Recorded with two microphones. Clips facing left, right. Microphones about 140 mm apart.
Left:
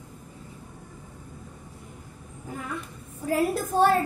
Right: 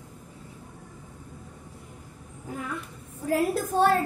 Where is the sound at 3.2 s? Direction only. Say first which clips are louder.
Even; centre (ahead or behind).